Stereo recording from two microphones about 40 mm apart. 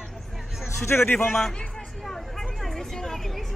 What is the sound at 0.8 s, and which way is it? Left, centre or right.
Speech, left.